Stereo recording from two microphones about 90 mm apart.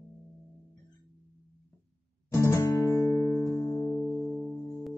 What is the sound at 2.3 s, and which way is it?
Music, 35° left (ahead or behind).